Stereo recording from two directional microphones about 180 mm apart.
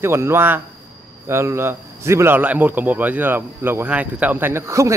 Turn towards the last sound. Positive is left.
turn(degrees=-15)  # may be behind; listen again after turning